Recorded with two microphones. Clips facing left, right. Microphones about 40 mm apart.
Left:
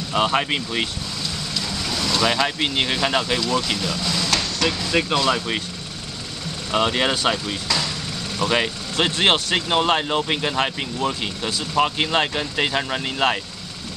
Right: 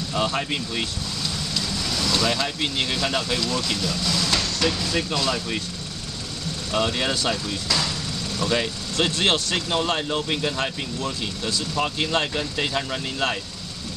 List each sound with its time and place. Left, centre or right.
0.1 s speech: left
1.6 s vehicle: centre
2.2 s speech: left
4.4 s a sound: centre
4.9 s speech: left
6.7 s speech: left
8.9 s speech: centre
9.7 s speech: left